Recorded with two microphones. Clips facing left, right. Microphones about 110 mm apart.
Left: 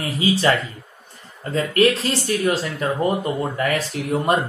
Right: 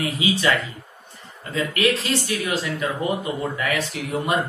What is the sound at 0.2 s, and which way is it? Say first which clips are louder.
A man's voice: left 4 dB; 35° left (ahead or behind).